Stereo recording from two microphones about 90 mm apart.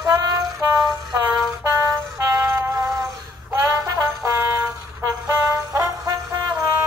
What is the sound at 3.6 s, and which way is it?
Brass instrument, 35° right (ahead or behind).